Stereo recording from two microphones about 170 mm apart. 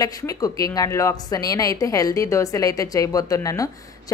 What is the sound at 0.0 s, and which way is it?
A woman's voice, 20° left (ahead or behind).